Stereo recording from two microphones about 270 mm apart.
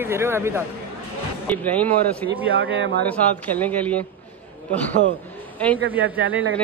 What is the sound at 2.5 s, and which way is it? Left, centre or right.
Speech, right.